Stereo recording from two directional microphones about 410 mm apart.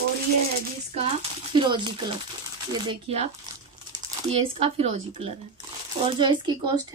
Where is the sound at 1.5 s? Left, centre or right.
Centre.